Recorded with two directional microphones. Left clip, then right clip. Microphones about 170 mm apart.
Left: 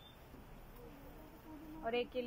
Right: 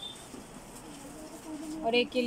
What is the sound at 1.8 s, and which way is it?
Speech, 10° right (ahead or behind).